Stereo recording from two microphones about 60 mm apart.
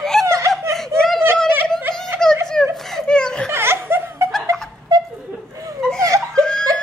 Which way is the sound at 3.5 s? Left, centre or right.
Right.